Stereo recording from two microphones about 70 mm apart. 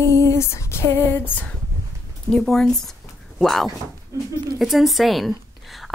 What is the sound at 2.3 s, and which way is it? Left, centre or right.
A woman's voice, centre.